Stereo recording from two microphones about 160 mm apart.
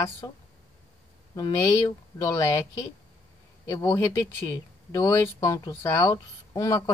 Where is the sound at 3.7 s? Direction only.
25° left (ahead or behind).